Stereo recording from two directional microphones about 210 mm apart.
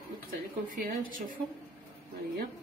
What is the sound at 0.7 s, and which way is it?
Speech, 40° right (ahead or behind).